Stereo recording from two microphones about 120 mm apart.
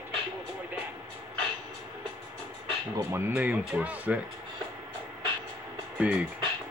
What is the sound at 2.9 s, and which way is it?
Speech, 20° right (ahead or behind).